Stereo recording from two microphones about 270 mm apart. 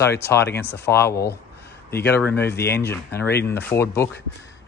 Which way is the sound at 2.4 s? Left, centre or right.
Left.